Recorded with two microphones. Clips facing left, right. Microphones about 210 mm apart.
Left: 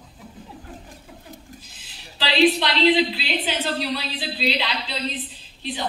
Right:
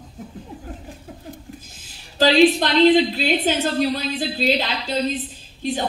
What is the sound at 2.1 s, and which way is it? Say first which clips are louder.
A woman's voice: right 5 dB; 45° right (ahead or behind).